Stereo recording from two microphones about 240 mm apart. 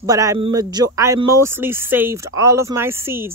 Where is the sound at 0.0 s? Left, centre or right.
Centre.